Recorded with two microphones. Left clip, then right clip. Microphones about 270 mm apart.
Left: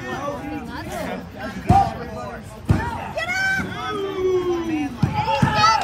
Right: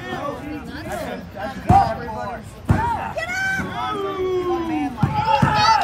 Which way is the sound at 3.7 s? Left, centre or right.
Right.